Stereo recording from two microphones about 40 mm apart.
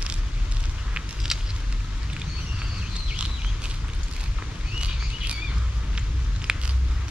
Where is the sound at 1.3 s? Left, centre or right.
Centre.